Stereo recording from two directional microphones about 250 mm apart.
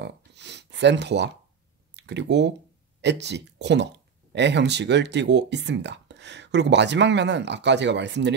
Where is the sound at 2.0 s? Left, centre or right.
Right.